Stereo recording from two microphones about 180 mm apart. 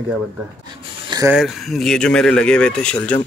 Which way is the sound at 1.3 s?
Centre (ahead or behind).